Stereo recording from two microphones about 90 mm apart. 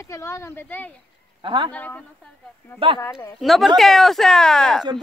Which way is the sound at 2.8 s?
85° right.